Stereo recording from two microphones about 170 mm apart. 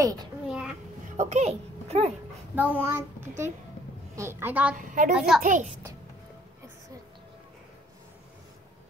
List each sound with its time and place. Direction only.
0.5 s child singing: 5° right (ahead or behind)
1.1 s a child's voice: 40° right (ahead or behind)
2.5 s a child's voice: 10° right (ahead or behind)
4.7 s a woman's voice: 50° right (ahead or behind)
5.1 s a child's voice: 5° right (ahead or behind)
5.4 s a woman's voice: 50° right (ahead or behind)